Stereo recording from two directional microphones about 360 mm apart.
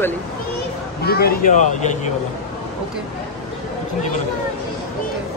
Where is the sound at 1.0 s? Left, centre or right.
Left.